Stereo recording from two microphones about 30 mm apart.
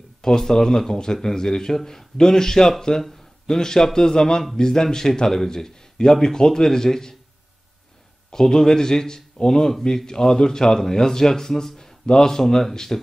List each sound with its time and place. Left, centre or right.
0.2 s a man's voice: centre
8.3 s a man's voice: centre